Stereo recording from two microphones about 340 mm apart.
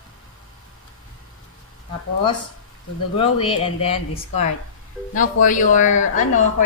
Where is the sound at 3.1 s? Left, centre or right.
Centre.